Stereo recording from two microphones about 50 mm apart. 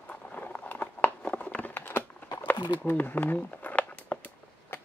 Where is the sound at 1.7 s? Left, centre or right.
Left.